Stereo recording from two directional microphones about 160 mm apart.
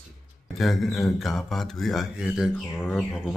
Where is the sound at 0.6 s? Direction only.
Centre (ahead or behind).